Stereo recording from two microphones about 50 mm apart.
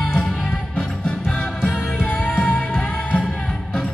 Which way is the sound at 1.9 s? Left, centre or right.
Left.